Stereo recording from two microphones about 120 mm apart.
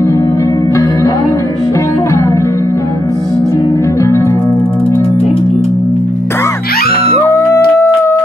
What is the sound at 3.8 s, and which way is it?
Music, 25° left (ahead or behind).